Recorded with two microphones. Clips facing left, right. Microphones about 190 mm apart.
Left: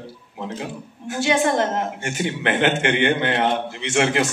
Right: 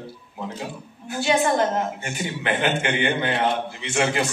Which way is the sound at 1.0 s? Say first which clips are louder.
Left 1 dB; 80° left.